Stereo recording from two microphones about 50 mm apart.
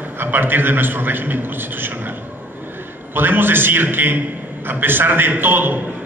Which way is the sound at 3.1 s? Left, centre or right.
Right.